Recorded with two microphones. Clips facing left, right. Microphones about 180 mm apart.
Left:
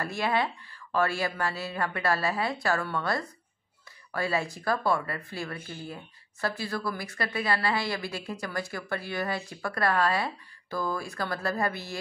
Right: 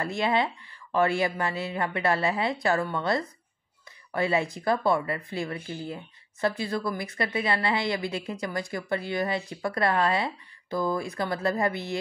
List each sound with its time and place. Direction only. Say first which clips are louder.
0.0 s a woman's voice: right 2 dB; 20° right (ahead or behind)